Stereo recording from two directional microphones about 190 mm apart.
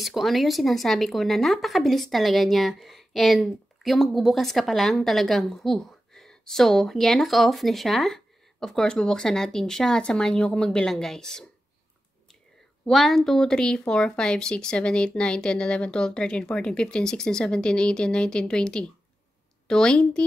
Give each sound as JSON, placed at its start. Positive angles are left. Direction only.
{"t": 0.0, "sound": "speech", "side_deg": 0}
{"t": 12.8, "sound": "speech", "side_deg": 0}